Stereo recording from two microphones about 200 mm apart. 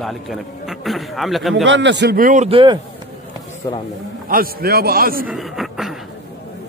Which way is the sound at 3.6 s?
20° left (ahead or behind).